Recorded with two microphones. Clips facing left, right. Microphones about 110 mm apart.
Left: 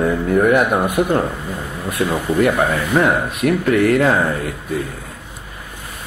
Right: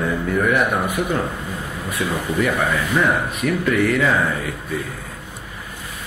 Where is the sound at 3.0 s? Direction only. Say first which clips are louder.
Left 3 dB; 50° left (ahead or behind).